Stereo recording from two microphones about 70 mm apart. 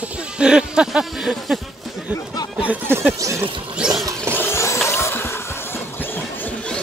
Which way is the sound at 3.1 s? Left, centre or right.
Right.